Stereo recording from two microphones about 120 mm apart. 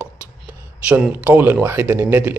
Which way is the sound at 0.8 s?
10° right (ahead or behind).